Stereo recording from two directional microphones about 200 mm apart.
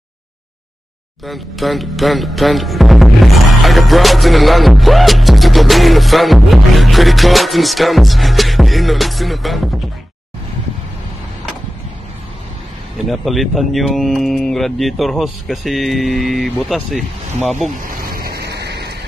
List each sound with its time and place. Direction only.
1.2 s speech: centre (ahead or behind)
12.9 s speech: centre (ahead or behind)
17.8 s vehicle: 50° right (ahead or behind)